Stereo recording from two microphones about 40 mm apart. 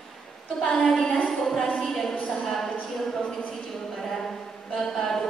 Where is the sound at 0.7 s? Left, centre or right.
Centre.